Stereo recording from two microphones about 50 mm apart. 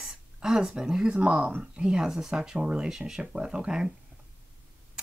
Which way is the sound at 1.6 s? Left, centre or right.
Centre.